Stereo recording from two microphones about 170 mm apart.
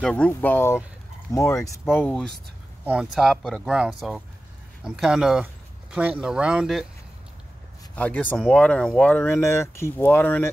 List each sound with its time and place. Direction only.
0.0 s speech: 5° left (ahead or behind)
2.0 s speech: 5° left (ahead or behind)
2.8 s speech: 5° right (ahead or behind)
7.9 s speech: 10° left (ahead or behind)